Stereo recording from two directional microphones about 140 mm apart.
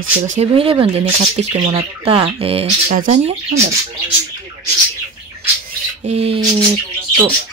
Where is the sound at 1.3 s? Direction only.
55° right (ahead or behind).